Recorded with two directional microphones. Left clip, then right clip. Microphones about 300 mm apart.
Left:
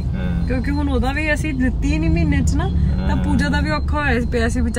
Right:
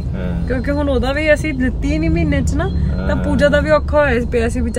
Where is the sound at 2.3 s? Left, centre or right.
Left.